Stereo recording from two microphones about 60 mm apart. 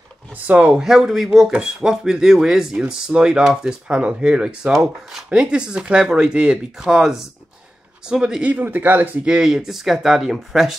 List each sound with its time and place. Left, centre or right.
0.5 s speech: right
0.7 s speech: centre
8.5 s speech: right
9.2 s speech: centre